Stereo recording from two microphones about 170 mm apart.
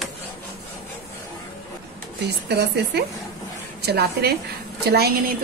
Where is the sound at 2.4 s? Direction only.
75° right (ahead or behind).